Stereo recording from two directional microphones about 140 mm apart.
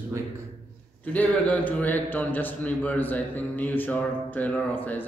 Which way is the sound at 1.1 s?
10° left (ahead or behind).